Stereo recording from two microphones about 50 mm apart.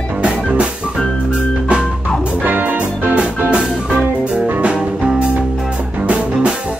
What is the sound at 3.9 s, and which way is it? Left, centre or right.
Music, right.